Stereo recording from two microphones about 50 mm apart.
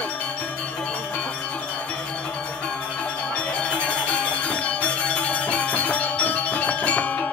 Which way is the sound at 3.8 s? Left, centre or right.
Left.